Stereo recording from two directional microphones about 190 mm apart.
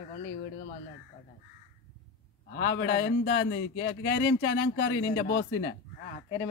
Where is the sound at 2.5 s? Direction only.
60° left (ahead or behind).